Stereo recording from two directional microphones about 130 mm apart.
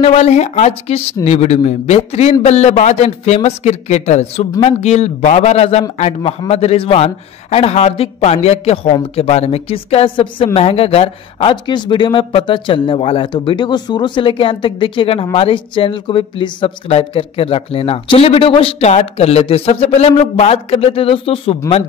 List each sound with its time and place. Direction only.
0.0 s speech: 60° left (ahead or behind)